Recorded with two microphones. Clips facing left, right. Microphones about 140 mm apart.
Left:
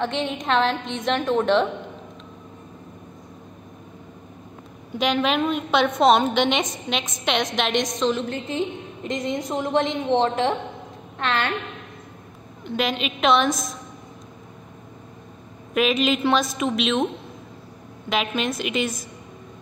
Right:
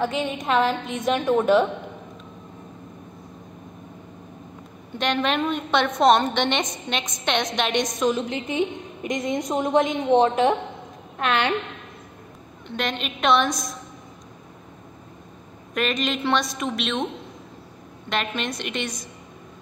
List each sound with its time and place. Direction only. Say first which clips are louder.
0.0 s a woman's voice: even; 5° right (ahead or behind)
4.9 s a woman's voice: left 2 dB; 5° left (ahead or behind)
8.1 s a woman's voice: even; 15° right (ahead or behind)
12.6 s a woman's voice: left 3 dB; 5° left (ahead or behind)
15.7 s a woman's voice: left 4 dB; 5° left (ahead or behind)
18.1 s a woman's voice: left 3 dB; 5° left (ahead or behind)